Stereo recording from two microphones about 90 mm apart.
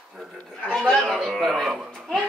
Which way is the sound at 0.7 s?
Centre (ahead or behind).